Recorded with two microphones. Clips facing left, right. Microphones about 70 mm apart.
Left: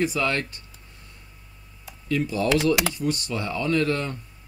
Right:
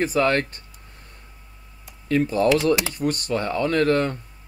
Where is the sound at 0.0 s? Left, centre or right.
Right.